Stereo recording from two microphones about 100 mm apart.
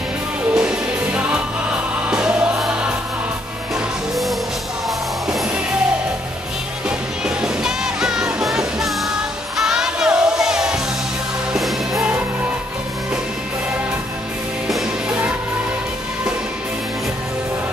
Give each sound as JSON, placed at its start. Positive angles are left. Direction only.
{"t": 0.6, "sound": "music", "side_deg": -10}
{"t": 7.2, "sound": "music", "side_deg": -5}
{"t": 14.7, "sound": "music", "side_deg": -10}